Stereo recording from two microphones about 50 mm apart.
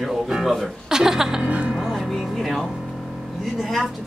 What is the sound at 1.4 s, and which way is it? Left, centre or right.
Speech, right.